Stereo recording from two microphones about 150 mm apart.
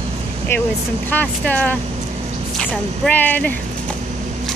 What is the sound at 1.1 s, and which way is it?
Speech, 10° left (ahead or behind).